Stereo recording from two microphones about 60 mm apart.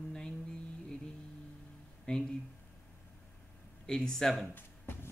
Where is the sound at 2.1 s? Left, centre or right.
Left.